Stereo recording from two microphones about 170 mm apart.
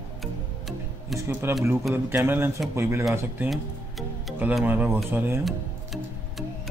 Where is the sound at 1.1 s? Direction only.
15° right (ahead or behind).